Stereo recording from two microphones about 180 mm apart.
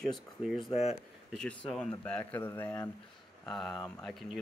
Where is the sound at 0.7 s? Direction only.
35° left (ahead or behind).